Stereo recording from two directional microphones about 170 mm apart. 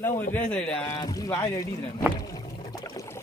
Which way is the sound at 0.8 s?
20° left (ahead or behind).